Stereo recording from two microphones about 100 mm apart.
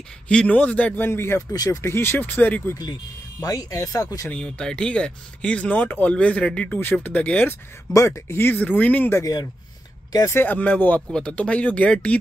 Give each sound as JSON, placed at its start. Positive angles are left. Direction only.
{"t": 0.3, "sound": "speech", "side_deg": 10}
{"t": 1.5, "sound": "speech", "side_deg": 35}
{"t": 2.8, "sound": "speech", "side_deg": 40}
{"t": 4.3, "sound": "speech", "side_deg": 10}
{"t": 7.9, "sound": "speech", "side_deg": 30}
{"t": 9.2, "sound": "speech", "side_deg": 40}
{"t": 10.1, "sound": "speech", "side_deg": 25}